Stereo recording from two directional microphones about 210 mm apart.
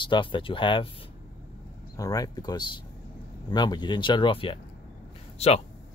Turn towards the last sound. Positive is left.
turn(degrees=30)  # may be behind; listen again after turning